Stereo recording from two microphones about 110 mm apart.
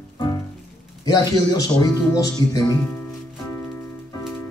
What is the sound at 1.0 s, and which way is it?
Speech, 35° left (ahead or behind).